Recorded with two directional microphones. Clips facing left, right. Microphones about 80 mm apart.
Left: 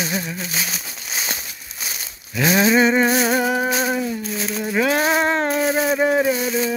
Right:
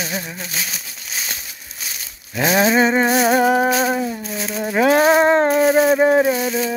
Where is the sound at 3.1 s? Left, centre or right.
Centre.